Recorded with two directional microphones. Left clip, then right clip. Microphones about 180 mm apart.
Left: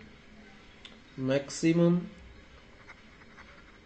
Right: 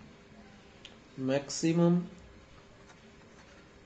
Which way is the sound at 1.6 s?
25° left (ahead or behind).